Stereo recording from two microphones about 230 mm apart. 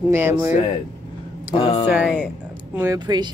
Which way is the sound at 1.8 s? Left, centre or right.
Centre.